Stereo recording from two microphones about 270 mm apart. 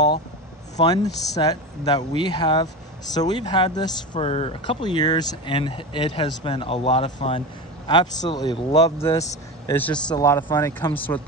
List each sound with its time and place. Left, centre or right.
0.7 s speech: centre